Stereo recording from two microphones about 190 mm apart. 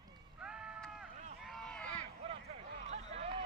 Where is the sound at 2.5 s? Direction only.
35° right (ahead or behind).